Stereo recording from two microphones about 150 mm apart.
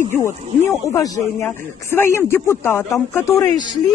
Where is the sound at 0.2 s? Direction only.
20° left (ahead or behind).